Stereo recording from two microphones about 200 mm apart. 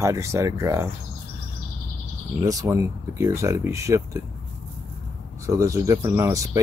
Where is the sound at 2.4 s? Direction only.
15° right (ahead or behind).